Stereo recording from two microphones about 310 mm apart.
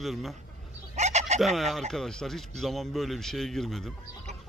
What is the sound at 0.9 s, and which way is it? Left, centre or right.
Fowl, right.